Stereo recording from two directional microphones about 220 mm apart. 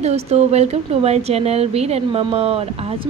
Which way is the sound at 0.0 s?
30° right (ahead or behind).